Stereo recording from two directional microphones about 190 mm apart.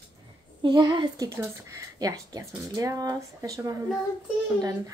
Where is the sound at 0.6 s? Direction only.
25° right (ahead or behind).